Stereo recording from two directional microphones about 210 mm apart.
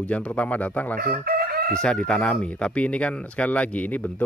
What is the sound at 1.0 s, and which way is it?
Chicken, 45° right (ahead or behind).